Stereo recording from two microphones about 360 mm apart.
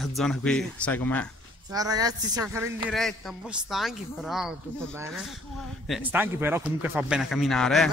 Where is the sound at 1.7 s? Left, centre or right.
Centre.